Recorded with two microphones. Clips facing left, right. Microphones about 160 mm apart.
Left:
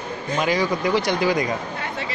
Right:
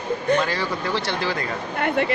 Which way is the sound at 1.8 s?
60° right (ahead or behind).